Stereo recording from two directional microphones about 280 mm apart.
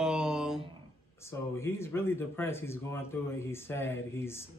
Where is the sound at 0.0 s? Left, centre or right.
Centre.